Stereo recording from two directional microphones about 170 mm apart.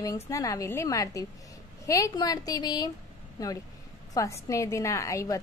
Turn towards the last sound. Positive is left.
turn(degrees=20)  # may be behind; listen again after turning